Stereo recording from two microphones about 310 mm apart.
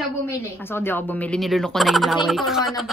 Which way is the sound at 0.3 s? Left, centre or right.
Centre.